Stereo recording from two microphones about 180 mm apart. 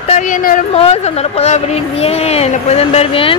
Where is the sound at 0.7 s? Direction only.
35° left (ahead or behind).